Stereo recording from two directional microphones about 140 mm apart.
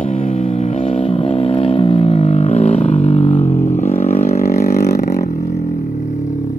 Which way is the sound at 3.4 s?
60° left (ahead or behind).